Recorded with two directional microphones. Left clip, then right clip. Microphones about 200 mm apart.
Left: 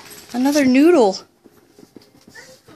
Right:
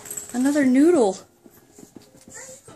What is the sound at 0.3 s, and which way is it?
Speech, 30° left (ahead or behind).